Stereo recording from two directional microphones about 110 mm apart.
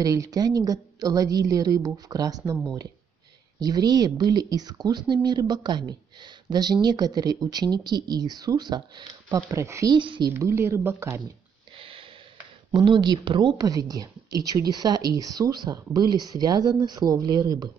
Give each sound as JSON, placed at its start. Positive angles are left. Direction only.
{"t": 0.0, "sound": "speech", "side_deg": -35}
{"t": 3.5, "sound": "speech", "side_deg": -35}
{"t": 9.5, "sound": "speech", "side_deg": -25}
{"t": 9.9, "sound": "a woman's voice", "side_deg": -45}
{"t": 10.3, "sound": "speech", "side_deg": -25}
{"t": 11.7, "sound": "a sound", "side_deg": -55}
{"t": 12.7, "sound": "speech", "side_deg": -50}